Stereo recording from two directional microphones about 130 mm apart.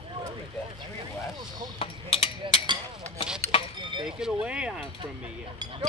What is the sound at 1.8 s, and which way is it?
Speech, 50° left (ahead or behind).